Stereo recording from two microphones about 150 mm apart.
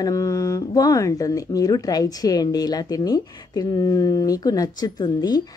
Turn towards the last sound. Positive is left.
turn(degrees=25)  # may be behind; listen again after turning